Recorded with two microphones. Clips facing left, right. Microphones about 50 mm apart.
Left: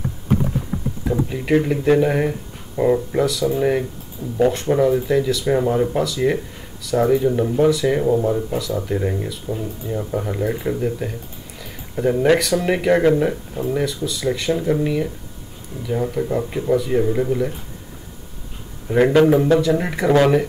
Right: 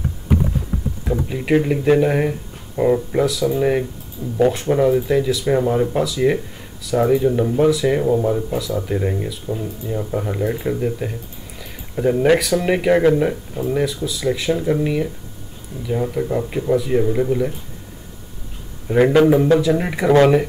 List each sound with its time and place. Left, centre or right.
1.1 s speech: centre
18.9 s speech: centre